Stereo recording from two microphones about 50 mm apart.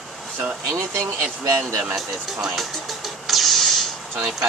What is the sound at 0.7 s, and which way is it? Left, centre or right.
Speech, right.